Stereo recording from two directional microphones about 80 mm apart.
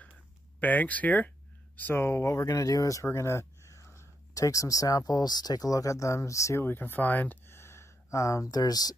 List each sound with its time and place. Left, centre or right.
0.6 s speech: left
2.0 s speech: left
6.6 s speech: left